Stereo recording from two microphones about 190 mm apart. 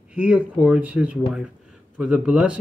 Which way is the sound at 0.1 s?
5° right (ahead or behind).